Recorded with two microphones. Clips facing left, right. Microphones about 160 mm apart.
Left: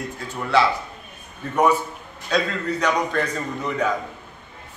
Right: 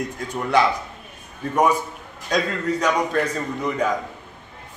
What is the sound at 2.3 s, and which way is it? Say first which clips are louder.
A man's voice: right 1 dB; 10° right (ahead or behind).